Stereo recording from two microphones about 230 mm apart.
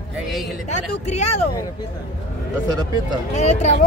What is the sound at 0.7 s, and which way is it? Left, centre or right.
Speech, left.